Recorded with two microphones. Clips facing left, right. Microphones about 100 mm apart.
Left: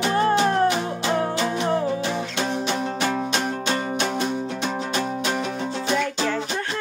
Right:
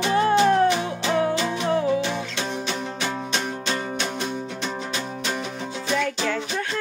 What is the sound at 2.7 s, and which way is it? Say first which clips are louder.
Music: left 4 dB; 45° left (ahead or behind).